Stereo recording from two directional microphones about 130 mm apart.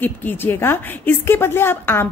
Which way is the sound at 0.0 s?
15° left (ahead or behind).